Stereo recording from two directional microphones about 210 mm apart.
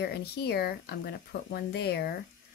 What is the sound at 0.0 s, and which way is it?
Speech, 50° left (ahead or behind).